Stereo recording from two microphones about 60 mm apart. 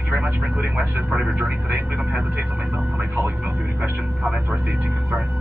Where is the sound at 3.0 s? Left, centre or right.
Right.